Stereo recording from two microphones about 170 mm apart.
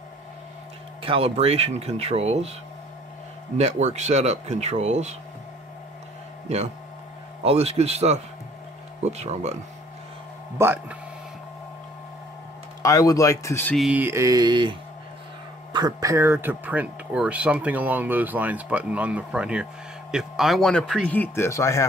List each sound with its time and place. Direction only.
1.0 s speech: 35° right (ahead or behind)
3.5 s speech: 40° right (ahead or behind)
7.4 s speech: 35° right (ahead or behind)
10.6 s speech: 10° right (ahead or behind)
12.8 s speech: 20° left (ahead or behind)
13.7 s a sound: 5° right (ahead or behind); by 14.8 s 25° right (ahead or behind)
15.7 s speech: 20° right (ahead or behind); by 21.8 s 15° left (ahead or behind)